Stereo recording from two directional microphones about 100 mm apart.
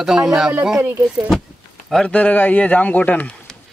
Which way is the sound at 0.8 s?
20° right (ahead or behind).